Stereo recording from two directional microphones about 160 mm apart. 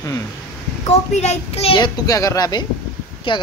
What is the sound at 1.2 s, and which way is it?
Speech, 40° left (ahead or behind).